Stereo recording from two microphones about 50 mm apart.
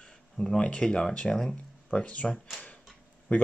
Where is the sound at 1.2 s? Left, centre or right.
Centre.